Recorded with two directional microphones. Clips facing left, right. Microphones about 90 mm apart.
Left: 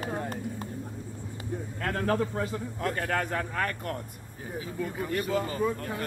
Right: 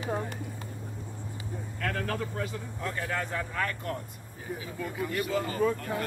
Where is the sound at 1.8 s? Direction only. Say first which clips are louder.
Left 4 dB; 30° left (ahead or behind).